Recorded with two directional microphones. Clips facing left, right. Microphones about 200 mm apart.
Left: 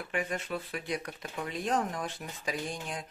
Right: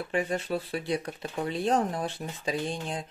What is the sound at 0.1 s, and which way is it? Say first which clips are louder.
Speech: right 5 dB; 30° right (ahead or behind).